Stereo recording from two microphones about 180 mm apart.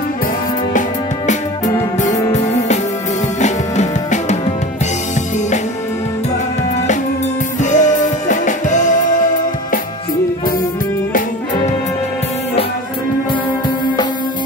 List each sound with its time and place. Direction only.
0.7 s music: 40° left (ahead or behind)
2.0 s music: 20° left (ahead or behind)
3.3 s drum: 40° left (ahead or behind)
7.6 s music: 45° left (ahead or behind)